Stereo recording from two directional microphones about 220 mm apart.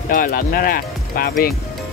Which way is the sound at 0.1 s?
40° left (ahead or behind).